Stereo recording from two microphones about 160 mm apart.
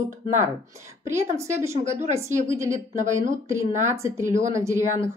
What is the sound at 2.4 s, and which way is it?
Speech, 20° right (ahead or behind).